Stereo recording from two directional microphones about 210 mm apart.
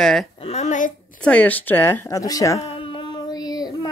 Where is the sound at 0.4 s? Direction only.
30° left (ahead or behind).